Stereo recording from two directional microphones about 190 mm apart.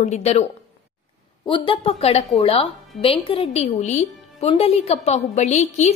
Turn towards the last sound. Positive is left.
turn(degrees=35)  # may be behind; listen again after turning